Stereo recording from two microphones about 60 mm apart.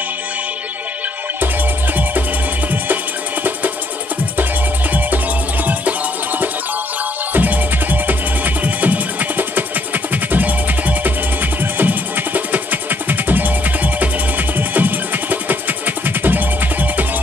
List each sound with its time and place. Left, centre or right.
7.3 s music: right